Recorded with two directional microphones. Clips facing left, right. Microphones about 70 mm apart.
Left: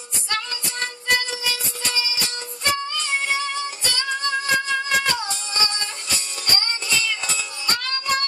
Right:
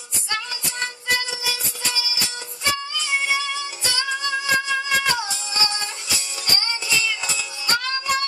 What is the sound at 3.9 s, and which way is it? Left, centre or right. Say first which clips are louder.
Music: even; centre.